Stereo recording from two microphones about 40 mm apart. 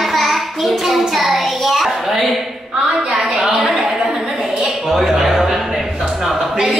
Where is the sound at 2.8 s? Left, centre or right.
Centre.